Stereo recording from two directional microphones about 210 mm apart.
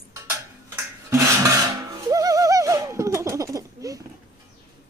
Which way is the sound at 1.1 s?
15° right (ahead or behind).